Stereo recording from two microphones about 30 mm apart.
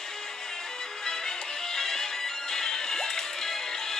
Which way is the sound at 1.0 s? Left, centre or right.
Left.